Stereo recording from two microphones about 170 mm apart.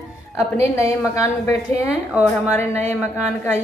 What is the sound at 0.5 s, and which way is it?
A woman's voice, 15° left (ahead or behind).